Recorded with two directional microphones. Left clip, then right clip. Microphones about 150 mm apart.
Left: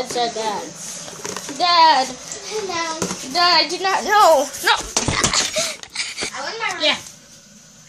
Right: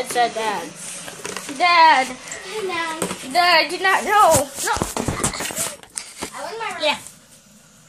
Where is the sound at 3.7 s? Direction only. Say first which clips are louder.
Even; 5° right (ahead or behind).